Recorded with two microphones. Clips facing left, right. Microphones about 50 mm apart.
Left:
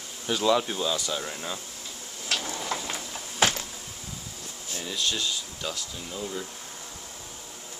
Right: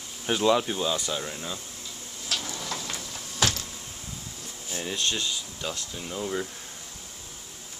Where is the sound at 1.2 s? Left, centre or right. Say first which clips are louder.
Left 1 dB; centre.